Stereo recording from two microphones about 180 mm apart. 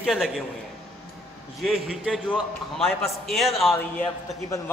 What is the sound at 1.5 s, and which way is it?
A man's voice, centre (ahead or behind).